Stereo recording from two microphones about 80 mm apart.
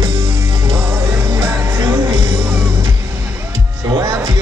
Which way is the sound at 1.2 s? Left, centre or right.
Right.